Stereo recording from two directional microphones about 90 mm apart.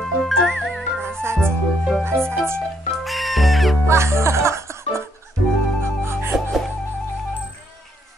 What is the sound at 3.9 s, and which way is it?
Music, 30° right (ahead or behind).